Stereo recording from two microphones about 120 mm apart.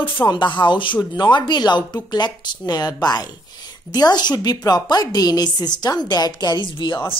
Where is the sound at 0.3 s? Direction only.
40° left (ahead or behind).